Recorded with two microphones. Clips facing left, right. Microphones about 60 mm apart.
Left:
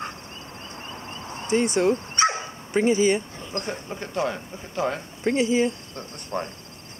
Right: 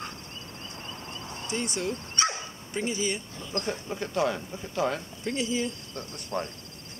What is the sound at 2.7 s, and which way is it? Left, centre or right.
Dog, left.